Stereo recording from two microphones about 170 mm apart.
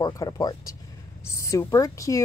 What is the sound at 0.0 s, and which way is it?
Speech, 20° left (ahead or behind).